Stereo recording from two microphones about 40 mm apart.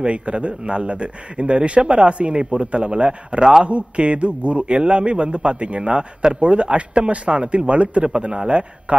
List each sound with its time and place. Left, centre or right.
0.0 s a man's voice: right